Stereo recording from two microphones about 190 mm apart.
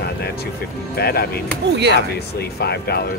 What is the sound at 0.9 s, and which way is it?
Speech, 55° left (ahead or behind).